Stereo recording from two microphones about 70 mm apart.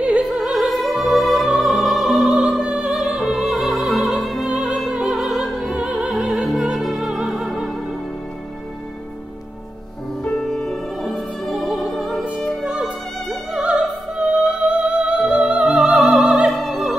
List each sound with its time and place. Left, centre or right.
0.2 s opera: centre
2.6 s opera: centre
10.2 s music: centre
13.5 s opera: centre
13.7 s opera: centre
14.7 s music: centre
15.6 s opera: centre
16.5 s opera: centre